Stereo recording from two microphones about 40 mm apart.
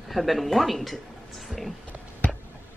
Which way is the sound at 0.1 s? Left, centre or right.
Centre.